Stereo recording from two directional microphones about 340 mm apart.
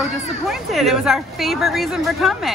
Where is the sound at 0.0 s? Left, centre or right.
Centre.